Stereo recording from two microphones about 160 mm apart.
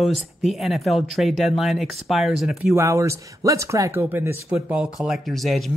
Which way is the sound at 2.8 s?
15° right (ahead or behind).